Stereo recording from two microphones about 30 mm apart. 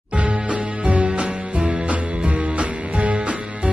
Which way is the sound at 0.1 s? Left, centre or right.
Right.